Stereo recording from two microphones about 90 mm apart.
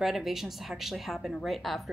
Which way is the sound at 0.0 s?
Centre (ahead or behind).